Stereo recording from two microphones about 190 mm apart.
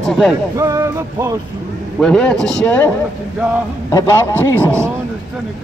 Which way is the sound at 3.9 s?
15° left (ahead or behind).